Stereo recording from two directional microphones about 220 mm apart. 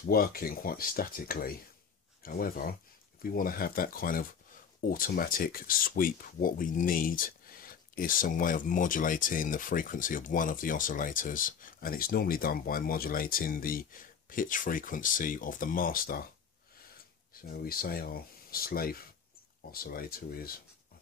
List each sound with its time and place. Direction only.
0.0 s speech: 40° left (ahead or behind)
17.3 s speech: 40° left (ahead or behind)